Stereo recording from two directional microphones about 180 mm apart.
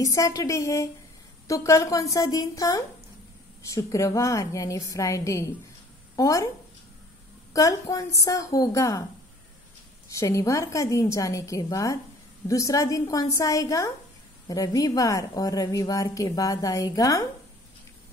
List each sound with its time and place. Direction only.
0.0 s a woman's voice: 20° left (ahead or behind)
7.5 s a woman's voice: 15° left (ahead or behind)
10.0 s a woman's voice: 15° left (ahead or behind)